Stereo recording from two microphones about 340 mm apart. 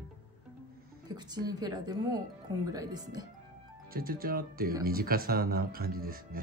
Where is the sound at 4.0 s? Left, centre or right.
Right.